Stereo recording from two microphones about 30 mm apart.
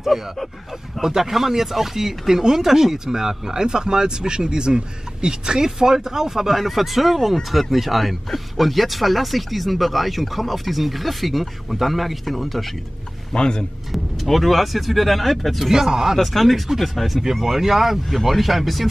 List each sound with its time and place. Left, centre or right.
1.0 s speech: centre
6.5 s speech: centre
13.3 s speech: left
13.9 s speech: centre
15.7 s speech: centre
16.2 s speech: centre
18.0 s speech: centre